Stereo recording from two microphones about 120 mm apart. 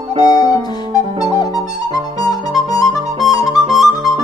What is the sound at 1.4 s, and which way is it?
Music, 30° left (ahead or behind).